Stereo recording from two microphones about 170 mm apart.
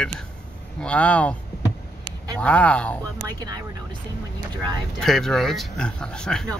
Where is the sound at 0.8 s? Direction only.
10° left (ahead or behind).